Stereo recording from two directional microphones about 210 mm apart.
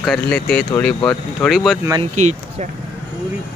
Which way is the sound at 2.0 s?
35° right (ahead or behind).